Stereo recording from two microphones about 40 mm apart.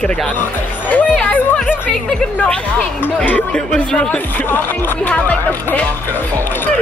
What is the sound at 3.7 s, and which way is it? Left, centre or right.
Speech, left.